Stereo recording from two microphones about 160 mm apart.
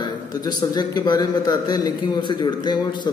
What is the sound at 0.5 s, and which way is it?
A man's voice, 25° left (ahead or behind).